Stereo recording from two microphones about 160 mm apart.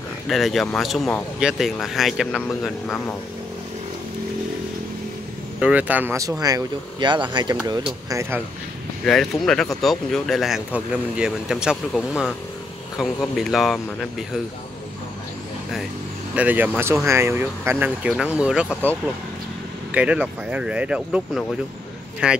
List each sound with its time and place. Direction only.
0.3 s speech: centre (ahead or behind)
5.6 s speech: 10° right (ahead or behind); by 7.5 s 30° right (ahead or behind)
8.1 s speech: 15° right (ahead or behind)
9.0 s speech: centre (ahead or behind)
16.3 s speech: 10° right (ahead or behind)
19.9 s speech: 10° right (ahead or behind)